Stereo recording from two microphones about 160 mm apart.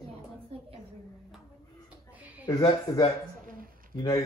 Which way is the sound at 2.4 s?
25° left (ahead or behind).